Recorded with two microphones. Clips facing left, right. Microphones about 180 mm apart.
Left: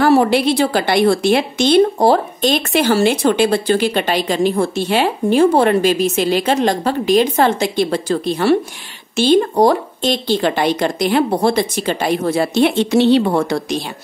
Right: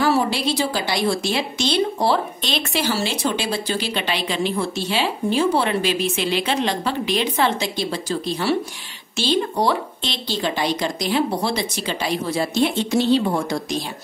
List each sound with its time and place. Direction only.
0.0 s a woman's voice: 60° left (ahead or behind)